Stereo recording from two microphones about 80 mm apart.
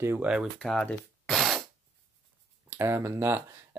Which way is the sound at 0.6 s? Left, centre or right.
Centre.